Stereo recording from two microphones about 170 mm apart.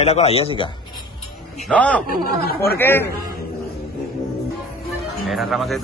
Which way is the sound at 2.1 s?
65° left (ahead or behind).